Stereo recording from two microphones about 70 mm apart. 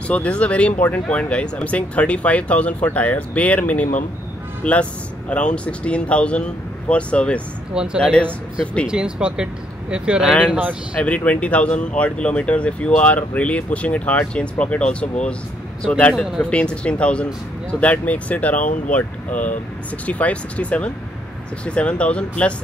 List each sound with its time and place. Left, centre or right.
0.1 s speech: centre
7.7 s speech: centre
8.0 s speech: centre
8.8 s speech: centre
11.0 s speech: centre